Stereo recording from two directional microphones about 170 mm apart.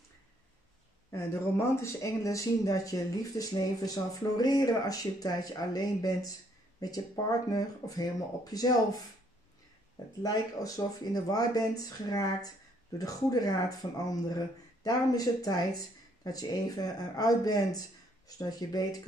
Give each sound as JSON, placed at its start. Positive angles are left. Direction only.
{"t": 1.1, "sound": "speech", "side_deg": 15}
{"t": 10.2, "sound": "speech", "side_deg": 20}